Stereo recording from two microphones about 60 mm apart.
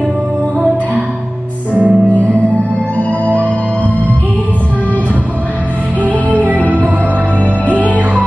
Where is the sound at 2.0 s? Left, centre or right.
Left.